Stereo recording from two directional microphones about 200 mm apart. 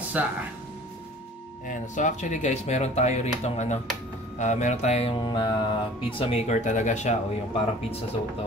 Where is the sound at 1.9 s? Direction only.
40° left (ahead or behind).